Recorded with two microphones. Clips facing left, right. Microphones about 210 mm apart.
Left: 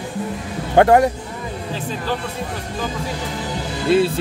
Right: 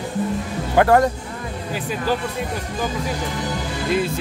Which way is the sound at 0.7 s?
20° left (ahead or behind).